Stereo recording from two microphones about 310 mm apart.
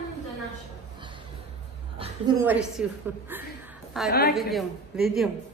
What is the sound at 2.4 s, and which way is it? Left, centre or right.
A woman's voice, centre.